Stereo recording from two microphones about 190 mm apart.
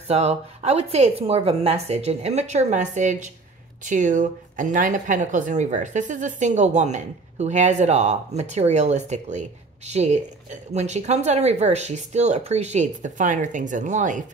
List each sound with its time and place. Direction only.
0.1 s a woman's voice: 35° right (ahead or behind)